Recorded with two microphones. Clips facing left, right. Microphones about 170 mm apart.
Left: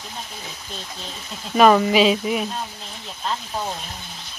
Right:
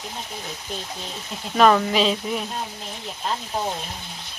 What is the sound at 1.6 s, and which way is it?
Speech, 10° left (ahead or behind).